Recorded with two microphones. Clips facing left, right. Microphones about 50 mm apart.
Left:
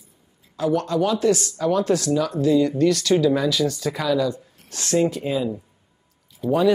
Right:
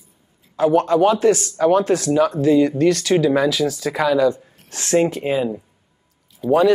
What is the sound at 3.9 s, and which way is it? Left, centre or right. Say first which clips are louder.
Speech: right 8 dB; right.